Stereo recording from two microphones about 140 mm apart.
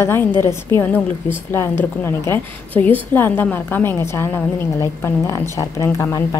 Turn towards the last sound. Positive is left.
turn(degrees=25)  # may be behind; listen again after turning